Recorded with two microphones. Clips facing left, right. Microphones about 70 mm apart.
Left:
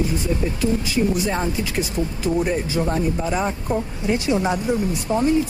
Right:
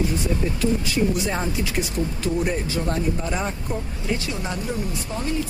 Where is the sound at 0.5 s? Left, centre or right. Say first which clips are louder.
Left 1 dB; centre.